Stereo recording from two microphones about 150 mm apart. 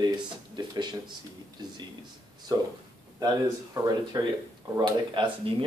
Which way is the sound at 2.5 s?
25° right (ahead or behind).